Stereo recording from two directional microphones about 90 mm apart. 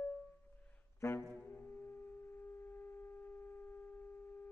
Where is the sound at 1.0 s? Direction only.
30° left (ahead or behind).